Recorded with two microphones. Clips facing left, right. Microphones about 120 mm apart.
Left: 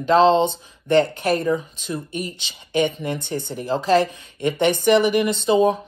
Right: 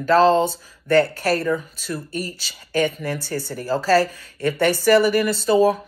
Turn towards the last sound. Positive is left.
turn(degrees=20)  # may be behind; listen again after turning